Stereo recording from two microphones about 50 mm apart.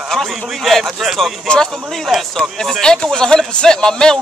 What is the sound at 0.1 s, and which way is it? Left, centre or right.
A man's voice, centre.